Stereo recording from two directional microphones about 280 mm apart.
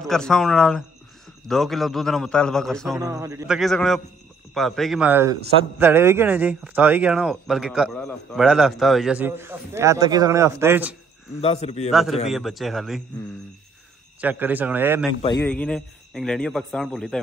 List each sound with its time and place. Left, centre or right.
0.0 s a man's voice: centre
3.0 s a man's voice: centre
11.4 s a man's voice: left
11.9 s a man's voice: centre
14.2 s a man's voice: centre
15.4 s a man's voice: centre